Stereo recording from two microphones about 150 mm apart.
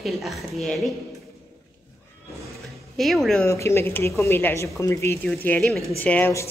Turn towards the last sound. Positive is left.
turn(degrees=15)  # may be behind; listen again after turning